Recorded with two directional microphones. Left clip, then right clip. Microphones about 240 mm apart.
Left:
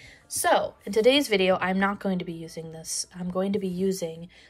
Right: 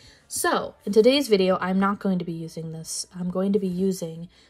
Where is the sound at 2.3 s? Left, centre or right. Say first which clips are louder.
Right 2 dB; centre.